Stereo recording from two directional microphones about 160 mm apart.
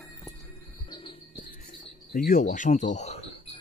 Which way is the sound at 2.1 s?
60° left (ahead or behind).